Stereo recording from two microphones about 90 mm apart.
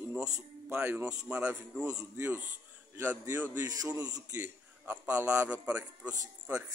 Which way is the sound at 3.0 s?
20° right (ahead or behind).